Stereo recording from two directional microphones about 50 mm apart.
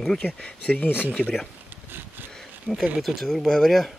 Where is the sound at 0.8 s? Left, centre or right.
Left.